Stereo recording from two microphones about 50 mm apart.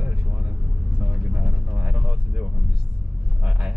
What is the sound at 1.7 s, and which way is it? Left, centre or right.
Speech, centre.